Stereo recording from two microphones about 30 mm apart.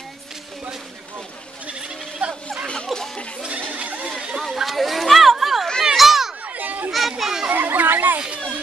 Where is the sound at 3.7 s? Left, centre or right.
Right.